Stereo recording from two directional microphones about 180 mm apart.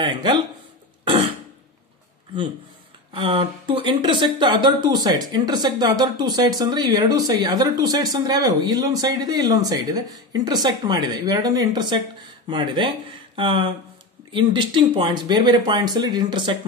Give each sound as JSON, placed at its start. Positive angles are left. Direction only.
{"t": 0.0, "sound": "speech", "side_deg": -25}
{"t": 3.1, "sound": "speech", "side_deg": -30}